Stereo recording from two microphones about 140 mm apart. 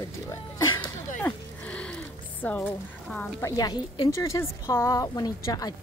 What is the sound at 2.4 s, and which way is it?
Speech, 10° left (ahead or behind).